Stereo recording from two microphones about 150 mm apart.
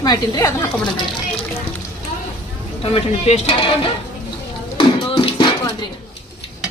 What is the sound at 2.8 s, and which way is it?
Speech, 45° left (ahead or behind).